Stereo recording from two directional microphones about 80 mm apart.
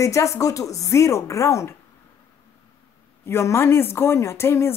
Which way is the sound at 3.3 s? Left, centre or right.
Left.